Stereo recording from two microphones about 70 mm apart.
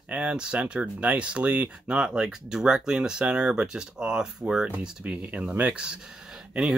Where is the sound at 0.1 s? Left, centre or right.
Centre.